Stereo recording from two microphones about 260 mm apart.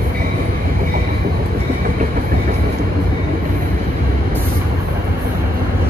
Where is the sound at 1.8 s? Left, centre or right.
Right.